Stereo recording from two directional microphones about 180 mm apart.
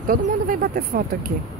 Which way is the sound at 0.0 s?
50° right (ahead or behind).